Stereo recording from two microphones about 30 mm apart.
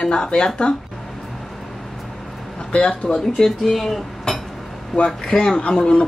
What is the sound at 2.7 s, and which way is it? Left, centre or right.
Speech, left.